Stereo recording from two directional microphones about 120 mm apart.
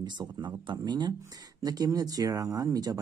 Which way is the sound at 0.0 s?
40° right (ahead or behind).